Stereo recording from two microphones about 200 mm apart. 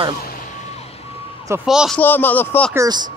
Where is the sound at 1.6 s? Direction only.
Centre (ahead or behind).